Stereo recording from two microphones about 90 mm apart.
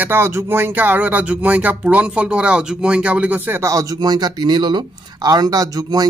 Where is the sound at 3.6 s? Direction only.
40° right (ahead or behind).